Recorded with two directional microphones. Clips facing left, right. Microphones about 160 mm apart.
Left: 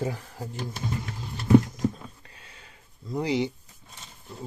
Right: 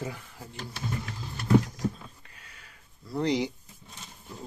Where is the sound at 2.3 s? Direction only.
30° left (ahead or behind).